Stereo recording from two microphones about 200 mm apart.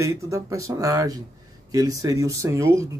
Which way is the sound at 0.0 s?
15° right (ahead or behind).